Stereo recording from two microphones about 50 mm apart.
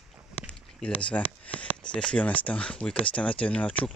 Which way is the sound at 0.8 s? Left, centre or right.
Left.